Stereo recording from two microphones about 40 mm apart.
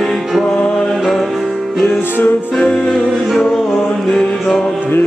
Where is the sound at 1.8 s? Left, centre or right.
Left.